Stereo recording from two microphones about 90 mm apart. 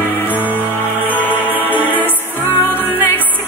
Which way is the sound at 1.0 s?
20° left (ahead or behind).